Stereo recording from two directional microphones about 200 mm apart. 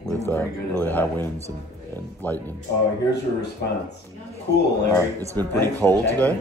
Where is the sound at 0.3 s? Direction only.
10° left (ahead or behind).